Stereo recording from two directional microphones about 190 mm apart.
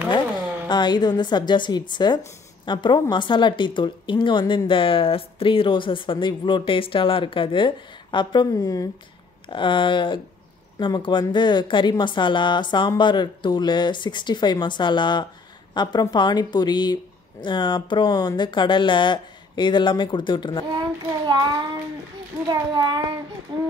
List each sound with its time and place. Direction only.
0.7 s a woman's voice: 20° left (ahead or behind)
21.3 s a child's voice: 20° right (ahead or behind)